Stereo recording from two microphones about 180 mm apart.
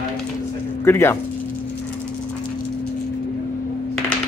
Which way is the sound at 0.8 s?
15° left (ahead or behind).